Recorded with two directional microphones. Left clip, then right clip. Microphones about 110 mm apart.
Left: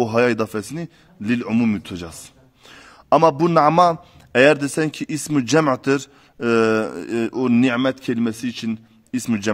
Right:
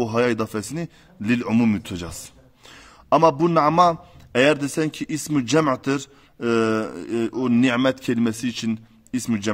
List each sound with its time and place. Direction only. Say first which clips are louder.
0.0 s speech: left 3 dB; 30° left (ahead or behind)
0.6 s a man's voice: left 1 dB; 5° left (ahead or behind)
2.7 s a man's voice: left 3 dB; 25° left (ahead or behind)
7.7 s a man's voice: even; centre (ahead or behind)
9.1 s speech: left 2 dB; 25° left (ahead or behind)